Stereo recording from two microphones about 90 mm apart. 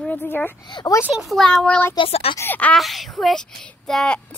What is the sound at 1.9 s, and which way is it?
Speech, 80° left.